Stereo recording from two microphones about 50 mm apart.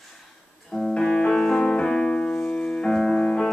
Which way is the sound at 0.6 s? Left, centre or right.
Centre.